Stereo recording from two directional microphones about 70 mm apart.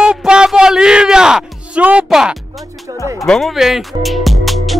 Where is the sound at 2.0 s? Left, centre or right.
Centre.